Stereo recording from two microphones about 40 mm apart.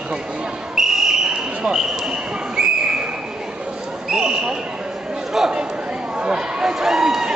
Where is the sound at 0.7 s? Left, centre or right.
Centre.